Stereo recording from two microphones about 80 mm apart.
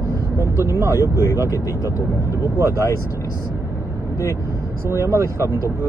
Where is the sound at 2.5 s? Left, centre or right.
Right.